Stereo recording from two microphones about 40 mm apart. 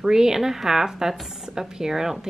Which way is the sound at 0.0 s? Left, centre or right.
Centre.